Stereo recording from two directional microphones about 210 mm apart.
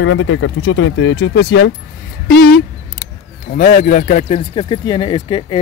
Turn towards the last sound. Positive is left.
turn(degrees=25)  # may be behind; listen again after turning